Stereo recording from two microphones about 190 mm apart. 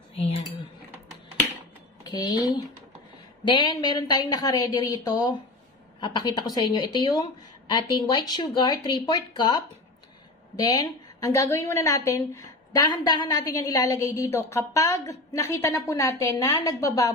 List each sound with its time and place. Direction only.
0.1 s dishes: 30° left (ahead or behind)
2.0 s speech: 25° left (ahead or behind)
10.6 s a woman's voice: 20° left (ahead or behind)